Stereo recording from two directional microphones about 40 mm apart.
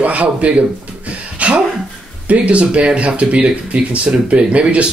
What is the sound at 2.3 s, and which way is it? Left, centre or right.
Speech, right.